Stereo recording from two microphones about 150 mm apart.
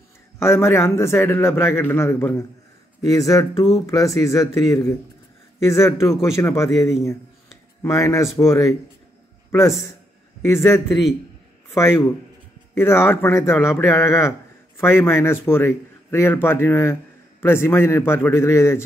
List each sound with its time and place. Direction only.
0.4 s a man's voice: 20° left (ahead or behind)